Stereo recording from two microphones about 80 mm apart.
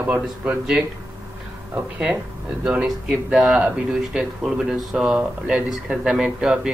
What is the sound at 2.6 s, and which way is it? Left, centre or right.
Speech, centre.